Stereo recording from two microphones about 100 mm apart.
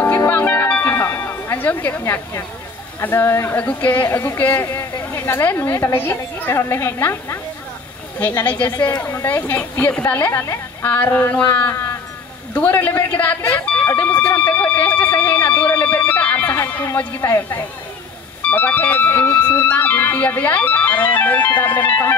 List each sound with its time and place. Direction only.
0.3 s music: 20° left (ahead or behind)
3.0 s speech: 20° left (ahead or behind)